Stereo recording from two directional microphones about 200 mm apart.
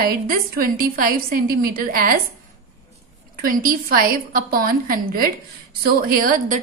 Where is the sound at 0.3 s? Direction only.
45° right (ahead or behind).